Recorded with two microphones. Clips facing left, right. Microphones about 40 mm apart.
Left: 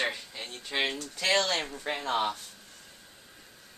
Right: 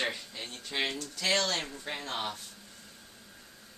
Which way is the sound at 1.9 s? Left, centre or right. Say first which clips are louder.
Left 6 dB; left.